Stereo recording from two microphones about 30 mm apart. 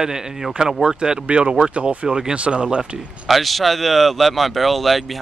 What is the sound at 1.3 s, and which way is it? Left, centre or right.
Speech, right.